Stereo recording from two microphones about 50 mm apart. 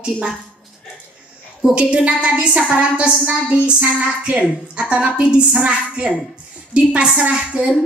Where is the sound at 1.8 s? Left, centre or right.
Right.